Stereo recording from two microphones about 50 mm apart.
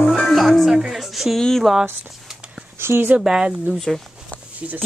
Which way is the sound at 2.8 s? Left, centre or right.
Right.